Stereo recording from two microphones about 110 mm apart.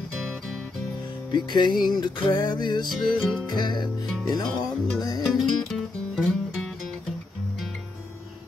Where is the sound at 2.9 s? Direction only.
Centre (ahead or behind).